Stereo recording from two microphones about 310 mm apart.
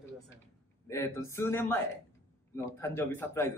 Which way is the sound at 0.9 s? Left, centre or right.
Centre.